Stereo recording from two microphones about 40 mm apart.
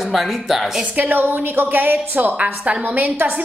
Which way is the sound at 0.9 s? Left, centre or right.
Right.